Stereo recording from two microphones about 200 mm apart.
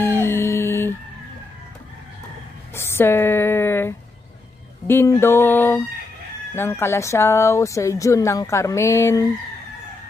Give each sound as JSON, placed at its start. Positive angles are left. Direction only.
{"t": 0.0, "sound": "music", "side_deg": 10}
{"t": 2.7, "sound": "a sound", "side_deg": 10}
{"t": 4.8, "sound": "speech", "side_deg": 15}